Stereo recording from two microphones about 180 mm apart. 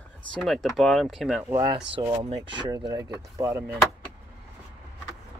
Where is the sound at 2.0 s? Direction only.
30° right (ahead or behind).